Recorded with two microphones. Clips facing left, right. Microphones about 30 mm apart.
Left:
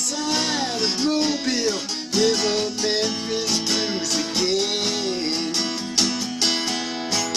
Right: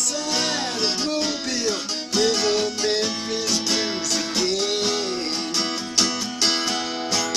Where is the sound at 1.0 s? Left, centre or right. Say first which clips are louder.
Left 3 dB; centre.